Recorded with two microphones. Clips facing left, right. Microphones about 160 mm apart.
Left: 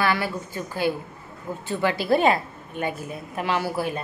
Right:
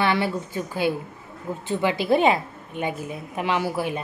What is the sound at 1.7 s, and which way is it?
A woman's voice, 15° right (ahead or behind).